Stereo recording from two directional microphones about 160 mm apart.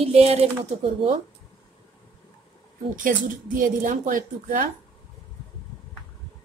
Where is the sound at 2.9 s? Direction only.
55° right (ahead or behind).